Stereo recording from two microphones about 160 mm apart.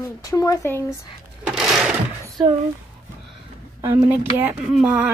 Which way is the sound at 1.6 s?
5° right (ahead or behind).